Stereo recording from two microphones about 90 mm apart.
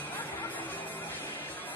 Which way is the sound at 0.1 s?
20° left (ahead or behind).